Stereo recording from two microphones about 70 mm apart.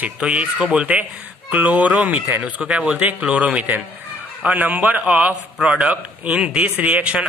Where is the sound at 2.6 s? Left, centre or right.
Centre.